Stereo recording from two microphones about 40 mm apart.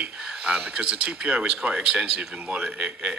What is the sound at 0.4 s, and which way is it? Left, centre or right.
Speech, right.